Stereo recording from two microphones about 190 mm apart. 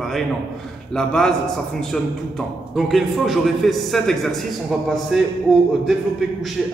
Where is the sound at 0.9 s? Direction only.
5° left (ahead or behind).